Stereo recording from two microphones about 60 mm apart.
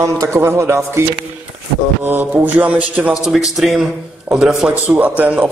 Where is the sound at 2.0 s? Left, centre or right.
Right.